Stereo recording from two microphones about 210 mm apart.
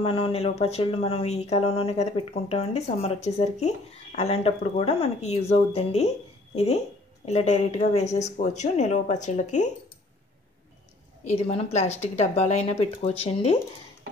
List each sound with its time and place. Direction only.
0.0 s speech: 25° left (ahead or behind)
11.2 s speech: 30° left (ahead or behind)